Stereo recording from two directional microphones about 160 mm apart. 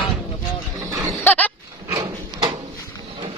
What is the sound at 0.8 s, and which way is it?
Dog, 20° right (ahead or behind).